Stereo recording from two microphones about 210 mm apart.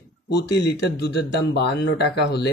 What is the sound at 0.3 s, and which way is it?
Speech, 55° left (ahead or behind).